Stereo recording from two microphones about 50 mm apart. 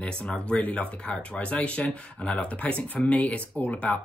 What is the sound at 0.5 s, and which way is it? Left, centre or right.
Speech, left.